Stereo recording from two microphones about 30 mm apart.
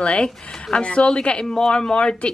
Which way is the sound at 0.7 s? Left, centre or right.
Left.